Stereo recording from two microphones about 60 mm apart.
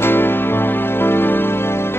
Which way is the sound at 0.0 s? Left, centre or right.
Left.